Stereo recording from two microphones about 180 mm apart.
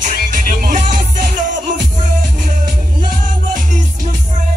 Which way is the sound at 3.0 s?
45° right (ahead or behind).